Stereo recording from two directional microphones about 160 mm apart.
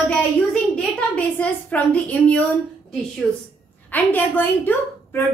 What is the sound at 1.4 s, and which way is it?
A woman's voice, 10° left (ahead or behind).